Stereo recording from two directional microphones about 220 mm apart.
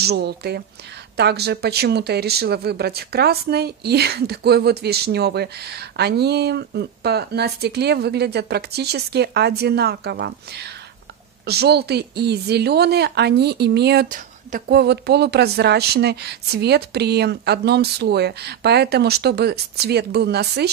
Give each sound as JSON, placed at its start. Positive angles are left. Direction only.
{"t": 0.0, "sound": "speech", "side_deg": -45}